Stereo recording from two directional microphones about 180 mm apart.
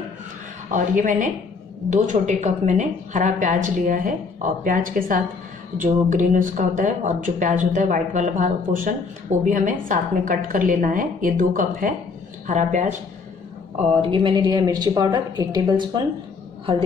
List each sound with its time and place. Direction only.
0.7 s a woman's voice: 45° right (ahead or behind)
13.7 s a woman's voice: 30° right (ahead or behind)